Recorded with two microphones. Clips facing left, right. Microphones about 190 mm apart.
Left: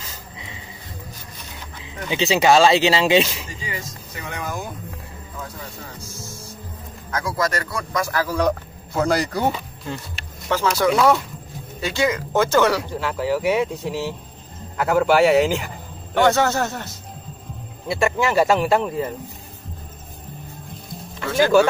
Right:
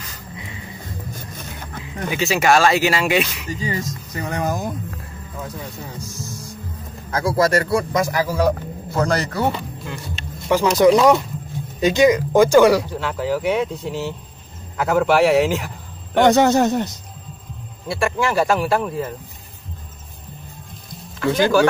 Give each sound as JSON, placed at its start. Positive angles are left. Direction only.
{"t": 2.0, "sound": "speech", "side_deg": 20}
{"t": 3.5, "sound": "speech", "side_deg": -40}
{"t": 7.1, "sound": "speech", "side_deg": -30}
{"t": 8.9, "sound": "speech", "side_deg": 10}
{"t": 10.1, "sound": "a sound", "side_deg": -15}
{"t": 11.0, "sound": "speech", "side_deg": -15}
{"t": 12.9, "sound": "speech", "side_deg": 0}
{"t": 16.2, "sound": "speech", "side_deg": -15}
{"t": 17.8, "sound": "speech", "side_deg": 20}